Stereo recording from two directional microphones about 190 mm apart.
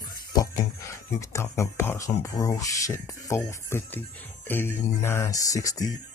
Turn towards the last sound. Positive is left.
turn(degrees=20)  # may be behind; listen again after turning